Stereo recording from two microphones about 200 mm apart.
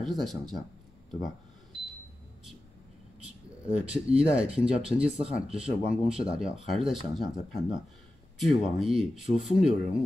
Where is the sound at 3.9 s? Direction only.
30° right (ahead or behind).